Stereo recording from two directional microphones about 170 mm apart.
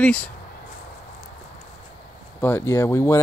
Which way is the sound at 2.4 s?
15° left (ahead or behind).